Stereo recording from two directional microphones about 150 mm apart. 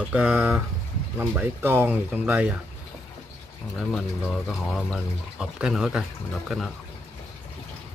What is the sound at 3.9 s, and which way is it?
Speech, centre (ahead or behind).